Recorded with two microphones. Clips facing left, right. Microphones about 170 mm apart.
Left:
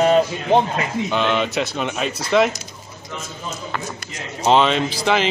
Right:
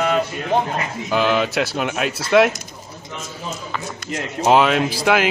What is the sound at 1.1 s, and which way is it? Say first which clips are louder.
Speech: right 4 dB; 5° right (ahead or behind).